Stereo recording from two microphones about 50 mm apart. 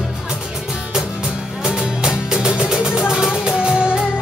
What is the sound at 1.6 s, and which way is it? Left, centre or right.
Music, centre.